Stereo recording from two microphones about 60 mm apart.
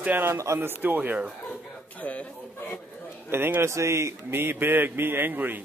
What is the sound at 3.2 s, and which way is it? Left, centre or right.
Speech, right.